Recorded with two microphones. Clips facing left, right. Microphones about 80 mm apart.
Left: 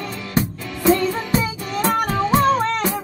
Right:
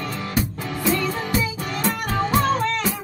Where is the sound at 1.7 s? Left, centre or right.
Left.